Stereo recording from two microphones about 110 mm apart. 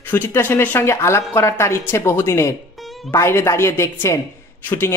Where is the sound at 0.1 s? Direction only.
20° left (ahead or behind).